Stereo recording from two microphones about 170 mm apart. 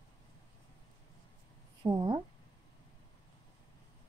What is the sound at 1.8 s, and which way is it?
Speech, 25° right (ahead or behind).